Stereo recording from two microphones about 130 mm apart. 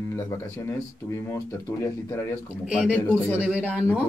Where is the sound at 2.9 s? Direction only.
15° left (ahead or behind).